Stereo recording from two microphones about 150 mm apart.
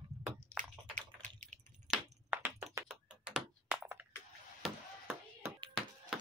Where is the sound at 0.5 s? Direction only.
60° right (ahead or behind).